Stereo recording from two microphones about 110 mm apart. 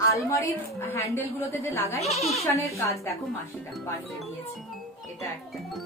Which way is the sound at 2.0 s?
75° left (ahead or behind).